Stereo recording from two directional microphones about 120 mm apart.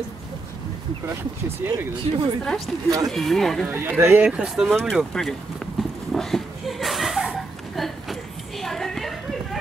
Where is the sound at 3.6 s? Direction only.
20° right (ahead or behind); by 5.3 s 5° left (ahead or behind).